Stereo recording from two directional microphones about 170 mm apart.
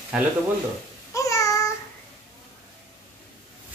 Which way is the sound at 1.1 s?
20° left (ahead or behind).